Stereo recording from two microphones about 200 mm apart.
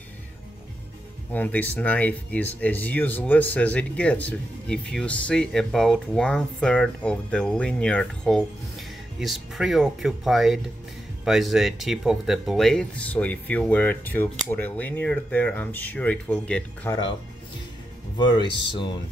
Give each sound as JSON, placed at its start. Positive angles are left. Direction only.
{"t": 1.3, "sound": "speech", "side_deg": 10}
{"t": 18.1, "sound": "speech", "side_deg": 20}